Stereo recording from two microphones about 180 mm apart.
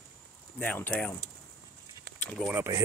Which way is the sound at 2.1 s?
60° right (ahead or behind).